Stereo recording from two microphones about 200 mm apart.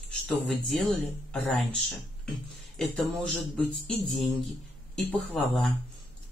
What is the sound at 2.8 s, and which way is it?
Speech, 5° left (ahead or behind).